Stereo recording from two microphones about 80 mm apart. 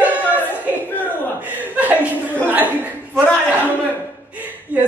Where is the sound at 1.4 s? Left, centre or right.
Right.